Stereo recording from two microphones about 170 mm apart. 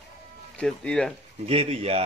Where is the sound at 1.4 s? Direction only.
35° right (ahead or behind).